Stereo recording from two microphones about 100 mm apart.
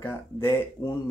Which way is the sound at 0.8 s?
40° left (ahead or behind).